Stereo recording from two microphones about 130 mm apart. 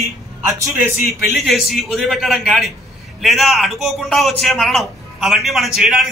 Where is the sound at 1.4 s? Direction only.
Centre (ahead or behind).